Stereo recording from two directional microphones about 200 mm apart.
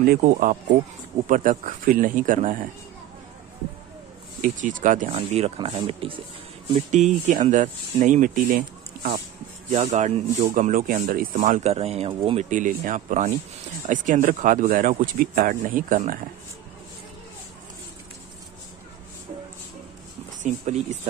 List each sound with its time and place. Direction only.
0.0 s speech: 45° right (ahead or behind)
4.4 s speech: 40° right (ahead or behind)
5.1 s speech: 30° right (ahead or behind)
6.9 s speech: 35° right (ahead or behind)
9.7 s speech: 35° right (ahead or behind)
12.4 s speech: 40° right (ahead or behind)
20.4 s speech: 35° right (ahead or behind)